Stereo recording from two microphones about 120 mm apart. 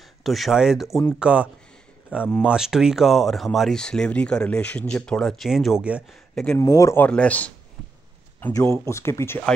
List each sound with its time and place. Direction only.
0.2 s speech: centre (ahead or behind)
6.3 s speech: 10° left (ahead or behind)
6.6 s speech: 25° left (ahead or behind)
7.1 s speech: 10° left (ahead or behind)
8.8 s speech: 25° left (ahead or behind)